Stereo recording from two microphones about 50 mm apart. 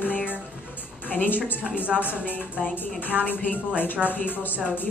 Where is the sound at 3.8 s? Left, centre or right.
Left.